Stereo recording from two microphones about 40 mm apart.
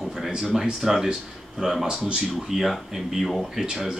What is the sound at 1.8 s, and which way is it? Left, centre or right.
Speech, right.